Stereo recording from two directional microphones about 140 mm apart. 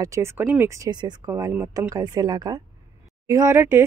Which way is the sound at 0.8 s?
30° right (ahead or behind).